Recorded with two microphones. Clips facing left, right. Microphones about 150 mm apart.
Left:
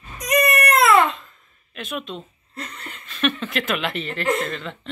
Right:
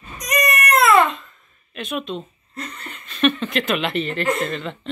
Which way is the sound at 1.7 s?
5° left (ahead or behind).